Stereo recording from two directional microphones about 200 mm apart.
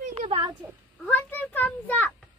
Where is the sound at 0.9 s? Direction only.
5° left (ahead or behind).